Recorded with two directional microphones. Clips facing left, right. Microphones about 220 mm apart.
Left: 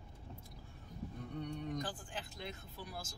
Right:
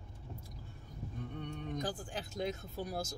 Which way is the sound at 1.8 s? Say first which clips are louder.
Right 5 dB; 40° right (ahead or behind).